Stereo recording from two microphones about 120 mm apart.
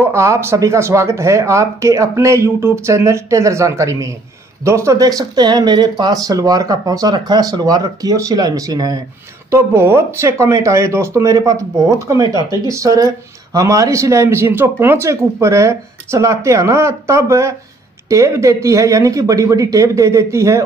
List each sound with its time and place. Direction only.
0.0 s speech: 20° right (ahead or behind)
9.5 s speech: 20° right (ahead or behind)